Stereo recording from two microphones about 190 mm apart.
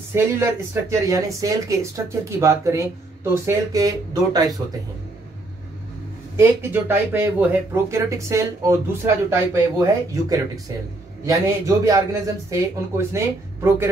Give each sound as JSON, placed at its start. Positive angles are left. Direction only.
{"t": 0.1, "sound": "speech", "side_deg": -15}
{"t": 6.3, "sound": "speech", "side_deg": -10}